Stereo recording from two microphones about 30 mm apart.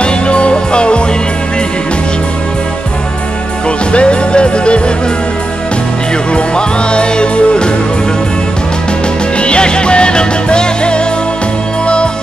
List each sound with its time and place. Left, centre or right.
0.0 s music: left
3.6 s music: left
6.3 s music: left
9.4 s music: left